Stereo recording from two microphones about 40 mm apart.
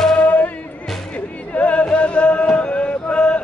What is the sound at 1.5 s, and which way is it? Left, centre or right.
Music, left.